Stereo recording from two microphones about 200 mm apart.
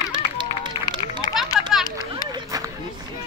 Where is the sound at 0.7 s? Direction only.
25° left (ahead or behind).